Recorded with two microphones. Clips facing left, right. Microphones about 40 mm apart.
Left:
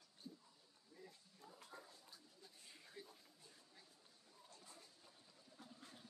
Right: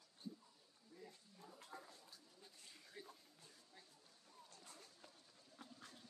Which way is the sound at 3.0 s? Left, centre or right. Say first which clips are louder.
Right 1 dB; right.